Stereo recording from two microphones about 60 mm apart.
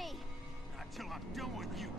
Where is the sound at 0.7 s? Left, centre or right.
Centre.